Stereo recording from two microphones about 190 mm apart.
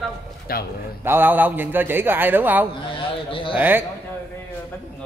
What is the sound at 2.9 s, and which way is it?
Speech, 25° left (ahead or behind).